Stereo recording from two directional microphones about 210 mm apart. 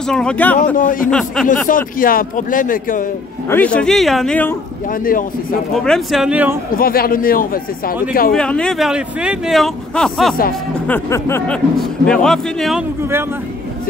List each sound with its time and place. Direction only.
0.0 s speech: 5° left (ahead or behind)
0.7 s speech: 40° left (ahead or behind)
1.1 s speech: 5° left (ahead or behind)
1.7 s speech: 40° left (ahead or behind)
3.4 s speech: 10° left (ahead or behind)
5.0 s speech: 40° left (ahead or behind)
5.9 s speech: centre (ahead or behind)
6.8 s speech: 45° left (ahead or behind)
8.3 s speech: 5° left (ahead or behind)
10.9 s speech: 10° left (ahead or behind)